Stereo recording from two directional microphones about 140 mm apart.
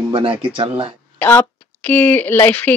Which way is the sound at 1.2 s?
15° left (ahead or behind).